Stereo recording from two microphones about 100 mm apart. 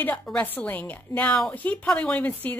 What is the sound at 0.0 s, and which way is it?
A woman's voice, 15° left (ahead or behind).